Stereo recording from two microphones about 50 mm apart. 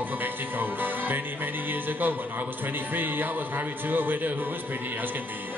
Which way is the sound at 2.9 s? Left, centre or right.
Right.